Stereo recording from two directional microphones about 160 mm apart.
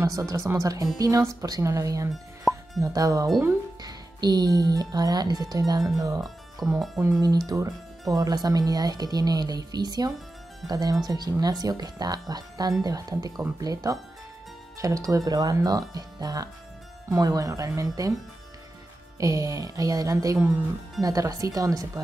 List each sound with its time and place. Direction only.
0.0 s speech: 20° right (ahead or behind)
2.5 s music: centre (ahead or behind)
2.8 s speech: 20° right (ahead or behind)
6.6 s speech: centre (ahead or behind)
7.0 s speech: 20° right (ahead or behind)
19.1 s speech: 20° right (ahead or behind)
20.3 s speech: 5° right (ahead or behind)
21.0 s speech: 20° right (ahead or behind)